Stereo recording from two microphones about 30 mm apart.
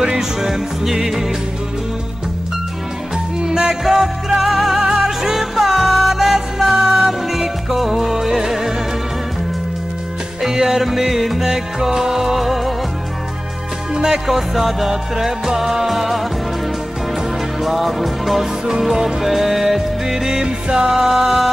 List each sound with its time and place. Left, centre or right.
0.0 s music: centre
3.4 s music: centre
3.8 s music: centre
4.7 s music: centre
10.5 s music: centre
14.0 s music: centre
17.6 s music: centre
20.6 s music: right
20.9 s music: centre